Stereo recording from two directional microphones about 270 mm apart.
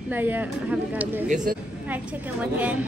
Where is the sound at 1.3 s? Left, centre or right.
Right.